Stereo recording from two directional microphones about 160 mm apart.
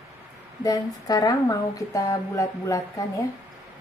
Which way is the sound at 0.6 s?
25° left (ahead or behind).